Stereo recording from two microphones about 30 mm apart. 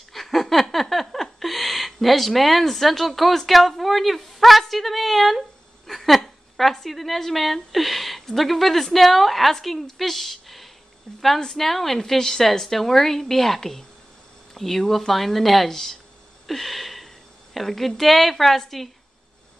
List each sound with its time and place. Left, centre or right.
0.1 s a sound: centre
2.6 s a woman's voice: centre
11.3 s a woman's voice: centre
11.6 s a woman's voice: centre
16.4 s a sound: centre
17.6 s a woman's voice: centre